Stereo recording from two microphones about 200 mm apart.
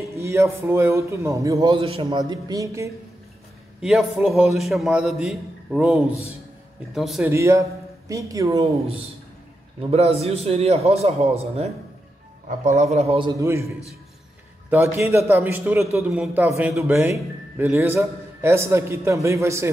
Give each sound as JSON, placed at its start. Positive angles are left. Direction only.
{"t": 0.0, "sound": "a man's voice", "side_deg": -15}
{"t": 3.8, "sound": "a man's voice", "side_deg": 0}
{"t": 8.5, "sound": "a man's voice", "side_deg": -30}
{"t": 13.4, "sound": "a man's voice", "side_deg": -15}
{"t": 14.7, "sound": "a man's voice", "side_deg": -10}